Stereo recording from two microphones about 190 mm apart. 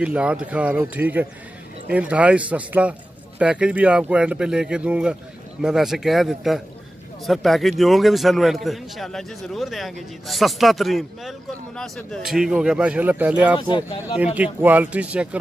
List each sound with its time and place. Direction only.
0.0 s a man's voice: 5° right (ahead or behind)
13.6 s speech: 25° left (ahead or behind)
14.1 s a man's voice: 5° right (ahead or behind)